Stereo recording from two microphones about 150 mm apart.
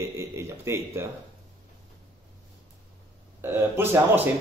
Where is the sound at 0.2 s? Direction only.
15° right (ahead or behind).